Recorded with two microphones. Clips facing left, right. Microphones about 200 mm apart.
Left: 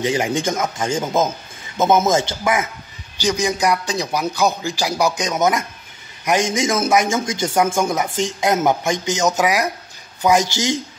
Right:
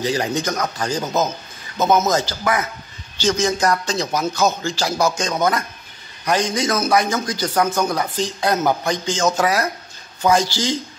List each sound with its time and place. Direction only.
0.0 s a man's voice: 20° left (ahead or behind)